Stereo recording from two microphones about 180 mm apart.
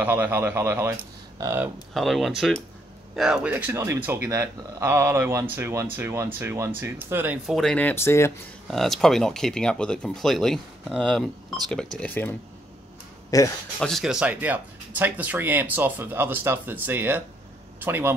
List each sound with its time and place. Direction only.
0.0 s speech: 10° right (ahead or behind)
2.0 s speech: centre (ahead or behind)
7.5 s speech: 5° left (ahead or behind)
8.6 s speech: centre (ahead or behind); by 13.5 s 20° left (ahead or behind)
13.7 s speech: centre (ahead or behind)